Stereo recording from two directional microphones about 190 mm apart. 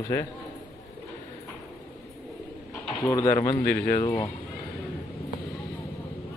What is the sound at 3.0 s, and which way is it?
Speech, 15° left (ahead or behind).